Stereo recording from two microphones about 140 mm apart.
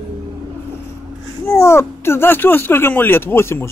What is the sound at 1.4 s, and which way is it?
Speech, 20° left (ahead or behind).